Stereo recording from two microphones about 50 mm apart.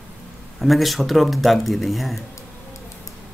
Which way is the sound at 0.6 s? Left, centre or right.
Centre.